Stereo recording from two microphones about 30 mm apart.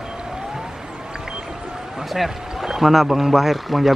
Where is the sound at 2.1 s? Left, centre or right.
Centre.